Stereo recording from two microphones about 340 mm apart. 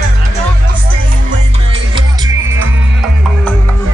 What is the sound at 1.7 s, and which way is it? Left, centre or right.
Music, centre.